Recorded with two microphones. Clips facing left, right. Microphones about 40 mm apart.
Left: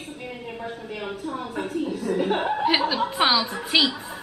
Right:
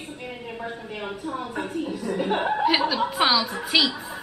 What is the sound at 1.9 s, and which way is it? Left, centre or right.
Speech, centre.